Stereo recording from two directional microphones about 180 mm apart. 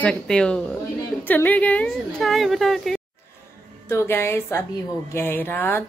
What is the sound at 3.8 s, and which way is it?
Speech, 15° left (ahead or behind).